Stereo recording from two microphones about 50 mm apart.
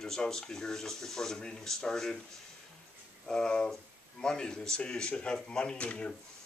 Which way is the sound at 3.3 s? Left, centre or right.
Centre.